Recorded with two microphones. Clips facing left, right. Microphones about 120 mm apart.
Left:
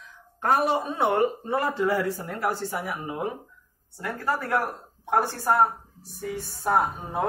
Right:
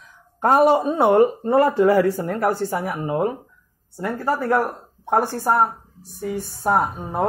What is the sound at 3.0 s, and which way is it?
Speech, 50° right (ahead or behind).